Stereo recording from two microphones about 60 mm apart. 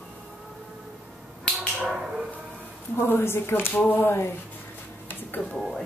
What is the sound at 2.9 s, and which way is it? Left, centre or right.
Speech, left.